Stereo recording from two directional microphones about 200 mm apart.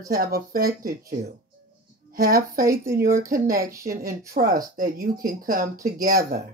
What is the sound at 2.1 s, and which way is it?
Speech, 45° right (ahead or behind).